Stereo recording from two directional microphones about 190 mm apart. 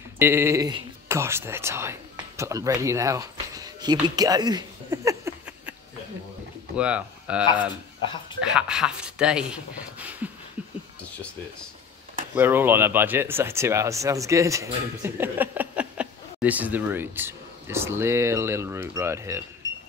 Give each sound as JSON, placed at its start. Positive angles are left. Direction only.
{"t": 0.2, "sound": "speech", "side_deg": -15}
{"t": 4.1, "sound": "a sound", "side_deg": -20}
{"t": 6.8, "sound": "speech", "side_deg": -5}
{"t": 12.4, "sound": "speech", "side_deg": -10}